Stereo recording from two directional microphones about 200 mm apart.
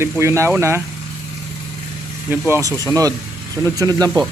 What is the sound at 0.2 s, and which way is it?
Speech, 15° right (ahead or behind).